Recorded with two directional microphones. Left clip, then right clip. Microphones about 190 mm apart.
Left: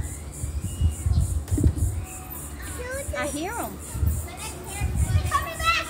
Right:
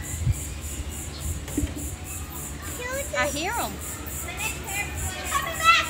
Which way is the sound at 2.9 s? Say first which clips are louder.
Right 4 dB; 45° left (ahead or behind).